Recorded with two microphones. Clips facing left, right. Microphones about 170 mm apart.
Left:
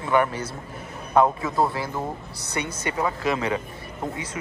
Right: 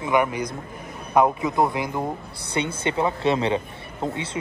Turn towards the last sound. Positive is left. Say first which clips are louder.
# right 3 dB
turn(degrees=-30)  # may be behind; listen again after turning